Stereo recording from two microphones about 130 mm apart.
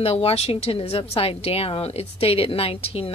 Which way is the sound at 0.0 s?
45° left (ahead or behind).